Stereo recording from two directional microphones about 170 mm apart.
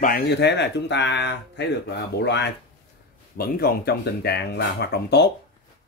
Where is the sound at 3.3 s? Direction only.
65° left (ahead or behind).